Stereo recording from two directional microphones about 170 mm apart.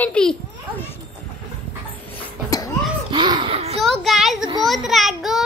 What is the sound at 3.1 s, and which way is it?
Laughter, 30° right (ahead or behind).